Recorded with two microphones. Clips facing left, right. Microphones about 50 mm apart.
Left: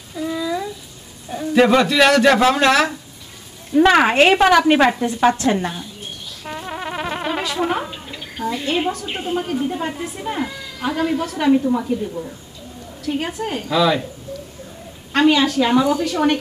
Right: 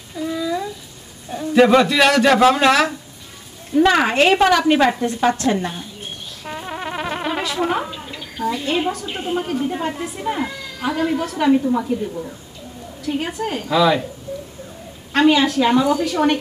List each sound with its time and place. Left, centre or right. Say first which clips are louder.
0.3 s a sound: even; centre
1.7 s a man's voice: even; centre
3.7 s a woman's voice: left 2 dB; left
6.4 s music: even; centre
7.6 s a sound: right 1 dB; centre
9.2 s a man's voice: even; centre
13.1 s a man's voice: even; centre
15.1 s a man's voice: even; centre